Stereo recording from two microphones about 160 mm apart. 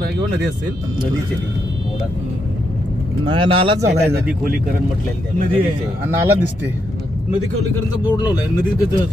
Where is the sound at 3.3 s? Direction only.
30° right (ahead or behind).